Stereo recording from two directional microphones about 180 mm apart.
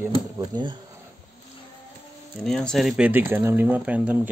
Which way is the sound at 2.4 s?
5° left (ahead or behind).